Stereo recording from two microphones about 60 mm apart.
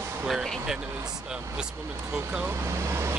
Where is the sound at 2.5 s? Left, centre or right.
Right.